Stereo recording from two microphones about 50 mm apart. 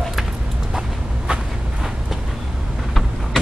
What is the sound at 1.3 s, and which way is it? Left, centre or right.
Vehicle, right.